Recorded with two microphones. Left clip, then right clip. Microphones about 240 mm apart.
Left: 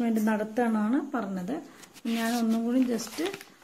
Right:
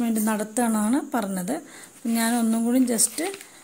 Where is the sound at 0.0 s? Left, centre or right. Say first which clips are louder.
Right 2 dB; right.